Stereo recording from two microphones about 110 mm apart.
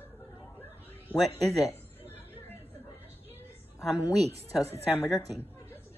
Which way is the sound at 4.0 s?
30° left (ahead or behind).